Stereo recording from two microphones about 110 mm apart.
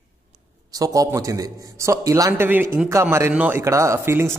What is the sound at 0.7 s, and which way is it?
A man's voice, 30° right (ahead or behind).